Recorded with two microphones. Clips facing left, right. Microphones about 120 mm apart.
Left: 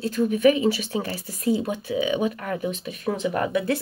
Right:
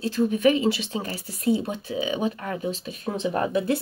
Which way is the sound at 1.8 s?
35° right (ahead or behind).